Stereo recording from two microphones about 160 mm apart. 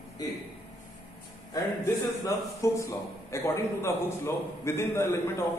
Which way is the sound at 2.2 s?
20° left (ahead or behind).